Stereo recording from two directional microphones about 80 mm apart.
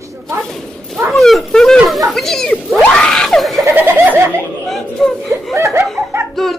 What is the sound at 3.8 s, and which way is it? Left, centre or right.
Bird, right.